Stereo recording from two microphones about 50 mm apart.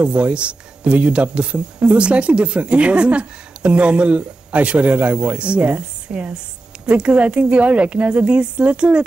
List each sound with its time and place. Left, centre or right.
0.0 s speech: right